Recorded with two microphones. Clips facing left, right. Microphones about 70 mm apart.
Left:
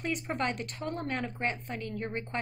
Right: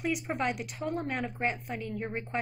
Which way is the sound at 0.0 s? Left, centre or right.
Centre.